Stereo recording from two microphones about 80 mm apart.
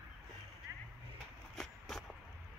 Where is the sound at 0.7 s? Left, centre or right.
Right.